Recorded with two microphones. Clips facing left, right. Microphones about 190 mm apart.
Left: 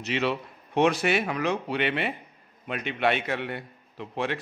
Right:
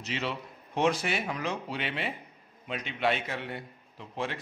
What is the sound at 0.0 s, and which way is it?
A man's voice, 65° left (ahead or behind).